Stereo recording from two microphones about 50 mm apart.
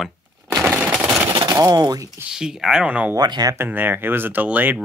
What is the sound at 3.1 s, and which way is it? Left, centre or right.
Speech, right.